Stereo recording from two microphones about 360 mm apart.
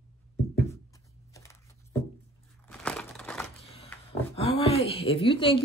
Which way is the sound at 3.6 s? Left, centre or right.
Centre.